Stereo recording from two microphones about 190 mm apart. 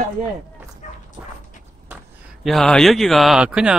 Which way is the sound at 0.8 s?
40° left (ahead or behind).